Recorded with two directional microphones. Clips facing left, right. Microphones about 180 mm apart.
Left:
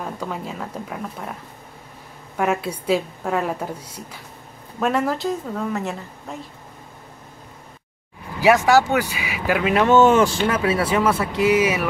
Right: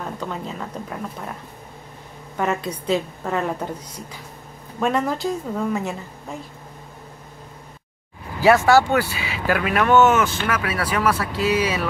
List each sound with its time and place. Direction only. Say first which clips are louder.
0.0 s a woman's voice: even; 5° left (ahead or behind)
8.4 s speech: even; 15° left (ahead or behind)